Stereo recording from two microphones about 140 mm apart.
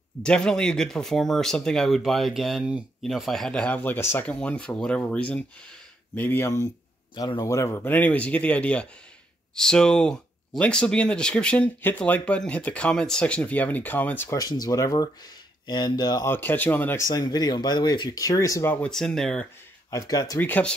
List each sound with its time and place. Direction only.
0.2 s speech: 5° left (ahead or behind)
7.2 s speech: 30° left (ahead or behind)
14.4 s speech: 30° left (ahead or behind)
16.3 s speech: 15° left (ahead or behind)
17.1 s speech: 30° left (ahead or behind)
18.9 s speech: 5° left (ahead or behind)
19.9 s speech: 25° left (ahead or behind)
20.3 s speech: 10° left (ahead or behind)